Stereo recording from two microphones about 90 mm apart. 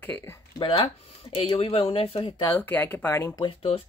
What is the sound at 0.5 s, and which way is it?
Speech, 75° left (ahead or behind).